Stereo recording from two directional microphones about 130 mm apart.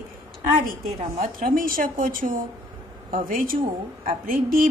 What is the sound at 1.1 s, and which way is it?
A woman's voice, 90° right.